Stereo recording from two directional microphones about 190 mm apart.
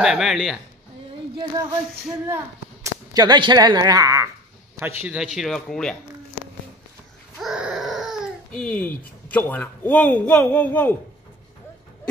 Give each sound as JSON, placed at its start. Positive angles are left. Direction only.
{"t": 0.0, "sound": "a man's voice", "side_deg": 0}
{"t": 1.3, "sound": "child singing", "side_deg": -25}
{"t": 2.0, "sound": "whip", "side_deg": -10}
{"t": 4.7, "sound": "a man's voice", "side_deg": -10}
{"t": 7.3, "sound": "baby cry", "side_deg": -5}
{"t": 9.5, "sound": "speech", "side_deg": 10}